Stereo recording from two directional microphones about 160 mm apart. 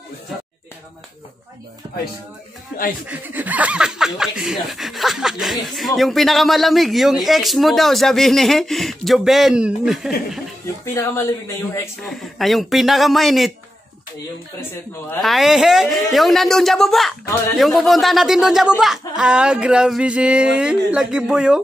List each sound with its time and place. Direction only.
3.1 s a man's voice: 10° right (ahead or behind)
11.0 s speech: 15° left (ahead or behind)
12.0 s a man's voice: centre (ahead or behind)
15.1 s a man's voice: centre (ahead or behind)